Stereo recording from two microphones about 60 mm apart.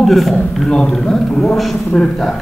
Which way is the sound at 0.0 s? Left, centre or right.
Centre.